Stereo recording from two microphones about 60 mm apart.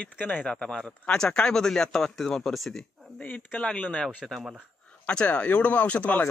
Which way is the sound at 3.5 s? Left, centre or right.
Left.